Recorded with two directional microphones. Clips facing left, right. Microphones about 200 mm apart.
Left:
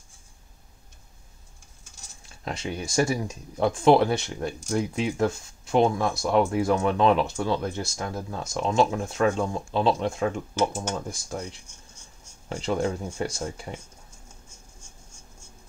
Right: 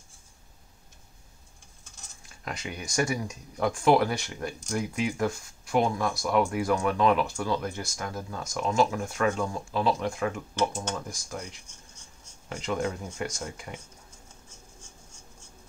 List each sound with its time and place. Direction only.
2.4 s speech: 25° left (ahead or behind)
10.7 s speech: 5° left (ahead or behind)
12.4 s speech: 30° left (ahead or behind)